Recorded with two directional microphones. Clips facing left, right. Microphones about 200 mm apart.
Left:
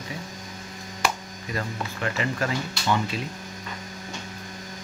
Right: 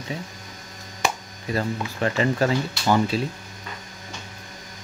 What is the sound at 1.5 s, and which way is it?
Speech, 30° right (ahead or behind).